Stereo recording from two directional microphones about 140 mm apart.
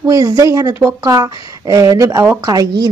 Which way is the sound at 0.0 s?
25° right (ahead or behind).